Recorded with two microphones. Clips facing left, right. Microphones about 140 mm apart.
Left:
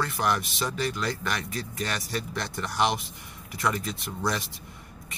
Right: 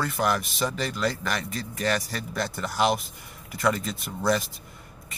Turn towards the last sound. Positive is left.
turn(degrees=0)  # may be behind; listen again after turning